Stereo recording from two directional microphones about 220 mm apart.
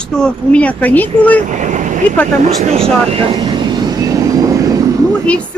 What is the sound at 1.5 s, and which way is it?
Speech, 35° right (ahead or behind).